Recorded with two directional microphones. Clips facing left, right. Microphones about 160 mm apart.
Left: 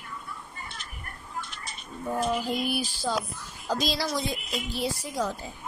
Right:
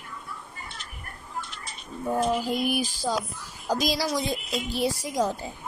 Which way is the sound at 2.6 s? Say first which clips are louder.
Right 3 dB; 15° right (ahead or behind).